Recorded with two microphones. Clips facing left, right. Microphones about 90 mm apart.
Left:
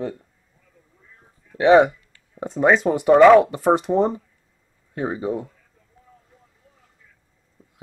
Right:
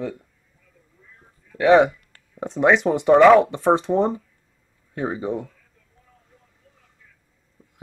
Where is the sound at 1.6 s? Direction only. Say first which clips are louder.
Left 1 dB; 5° left (ahead or behind).